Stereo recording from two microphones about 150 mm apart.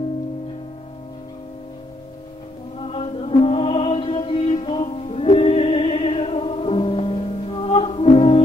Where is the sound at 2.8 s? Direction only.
40° left (ahead or behind).